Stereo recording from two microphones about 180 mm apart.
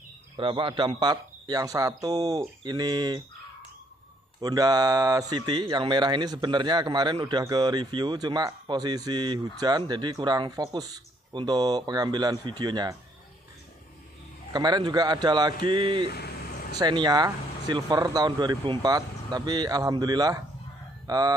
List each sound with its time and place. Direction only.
0.4 s speech: 30° right (ahead or behind)
4.4 s speech: 20° right (ahead or behind)
14.5 s speech: 25° right (ahead or behind)
16.1 s vehicle: 60° left (ahead or behind)
16.7 s speech: 25° right (ahead or behind)